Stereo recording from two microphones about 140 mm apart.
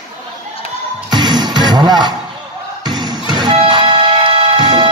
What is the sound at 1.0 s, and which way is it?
Music, 30° right (ahead or behind).